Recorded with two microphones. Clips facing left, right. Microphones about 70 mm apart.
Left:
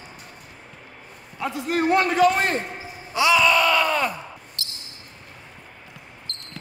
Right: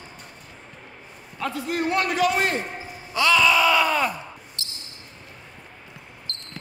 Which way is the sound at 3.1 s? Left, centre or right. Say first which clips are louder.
Left 1 dB; centre.